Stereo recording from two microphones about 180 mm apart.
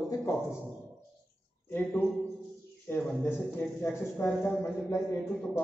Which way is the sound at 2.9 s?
10° left (ahead or behind).